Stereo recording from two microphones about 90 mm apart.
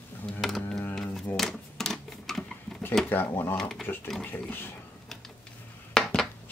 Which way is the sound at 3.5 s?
5° left (ahead or behind).